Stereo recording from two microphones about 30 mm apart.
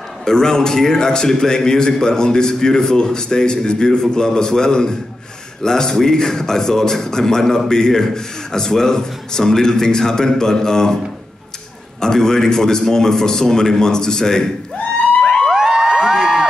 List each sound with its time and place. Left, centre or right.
0.2 s a man's voice: centre
12.0 s a man's voice: centre
15.2 s music: left
15.5 s crowd: right